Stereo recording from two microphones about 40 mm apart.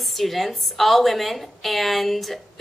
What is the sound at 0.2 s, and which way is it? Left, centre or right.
A woman's voice, centre.